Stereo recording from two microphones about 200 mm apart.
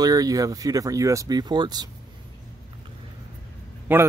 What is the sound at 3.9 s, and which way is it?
Speech, 10° right (ahead or behind).